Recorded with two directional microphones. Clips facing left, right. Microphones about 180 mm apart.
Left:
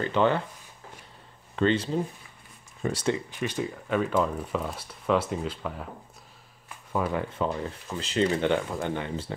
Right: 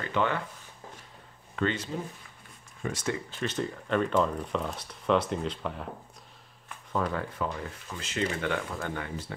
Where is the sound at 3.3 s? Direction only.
10° left (ahead or behind).